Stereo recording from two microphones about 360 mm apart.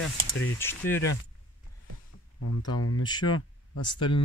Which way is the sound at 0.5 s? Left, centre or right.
Centre.